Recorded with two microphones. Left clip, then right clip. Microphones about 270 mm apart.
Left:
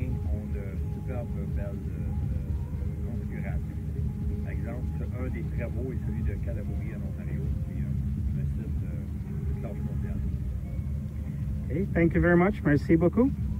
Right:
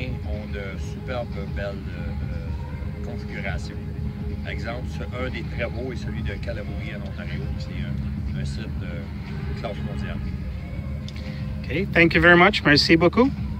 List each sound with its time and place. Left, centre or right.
11.7 s speech: centre